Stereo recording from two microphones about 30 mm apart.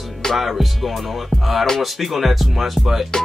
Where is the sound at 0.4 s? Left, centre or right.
Centre.